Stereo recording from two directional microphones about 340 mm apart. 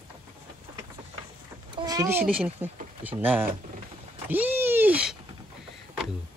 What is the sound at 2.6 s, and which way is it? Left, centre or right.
Speech, centre.